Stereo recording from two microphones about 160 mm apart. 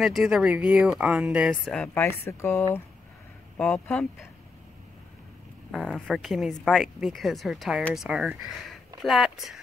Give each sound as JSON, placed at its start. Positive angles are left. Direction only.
{"t": 0.0, "sound": "speech", "side_deg": -5}
{"t": 2.4, "sound": "speech", "side_deg": 15}
{"t": 5.7, "sound": "speech", "side_deg": 5}